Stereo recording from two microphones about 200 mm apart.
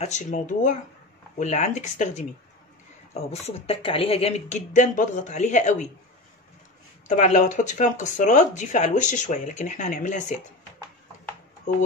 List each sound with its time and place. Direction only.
0.0 s speech: 35° left (ahead or behind)
7.1 s speech: 35° left (ahead or behind)